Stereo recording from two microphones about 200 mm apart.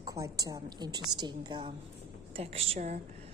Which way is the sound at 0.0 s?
15° right (ahead or behind).